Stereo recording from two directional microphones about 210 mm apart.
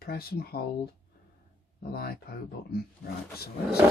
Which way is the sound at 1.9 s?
45° left (ahead or behind).